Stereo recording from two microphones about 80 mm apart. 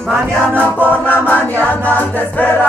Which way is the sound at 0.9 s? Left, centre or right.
Left.